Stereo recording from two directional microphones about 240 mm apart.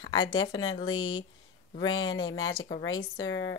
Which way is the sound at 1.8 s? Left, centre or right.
Centre.